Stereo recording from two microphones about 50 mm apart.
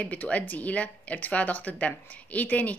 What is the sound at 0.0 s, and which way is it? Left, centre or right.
Speech, left.